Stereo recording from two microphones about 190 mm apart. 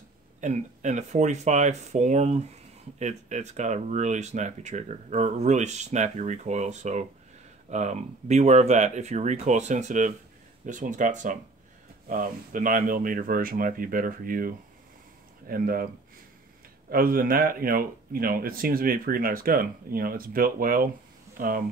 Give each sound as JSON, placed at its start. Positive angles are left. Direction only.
{"t": 0.4, "sound": "speech", "side_deg": -40}
{"t": 16.9, "sound": "speech", "side_deg": -50}